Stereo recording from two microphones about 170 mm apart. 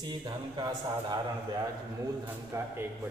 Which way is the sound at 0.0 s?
25° right (ahead or behind).